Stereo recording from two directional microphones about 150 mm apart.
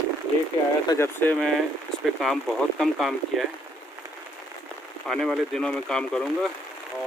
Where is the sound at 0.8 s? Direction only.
15° left (ahead or behind).